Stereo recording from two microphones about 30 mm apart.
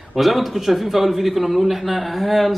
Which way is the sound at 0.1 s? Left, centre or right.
Centre.